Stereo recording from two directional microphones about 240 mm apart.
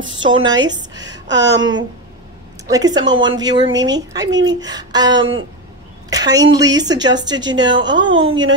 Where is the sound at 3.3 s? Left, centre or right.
Centre.